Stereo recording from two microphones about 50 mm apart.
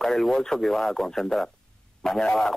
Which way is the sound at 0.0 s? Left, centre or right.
Centre.